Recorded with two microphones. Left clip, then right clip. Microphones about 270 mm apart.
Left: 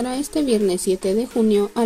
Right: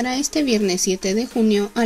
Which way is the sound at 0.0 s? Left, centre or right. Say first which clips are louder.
Right 1 dB; right.